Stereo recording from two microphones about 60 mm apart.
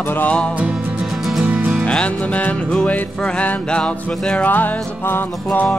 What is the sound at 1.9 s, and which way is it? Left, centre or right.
Music, centre.